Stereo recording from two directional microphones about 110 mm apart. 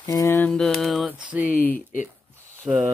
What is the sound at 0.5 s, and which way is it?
Speech, 5° left (ahead or behind).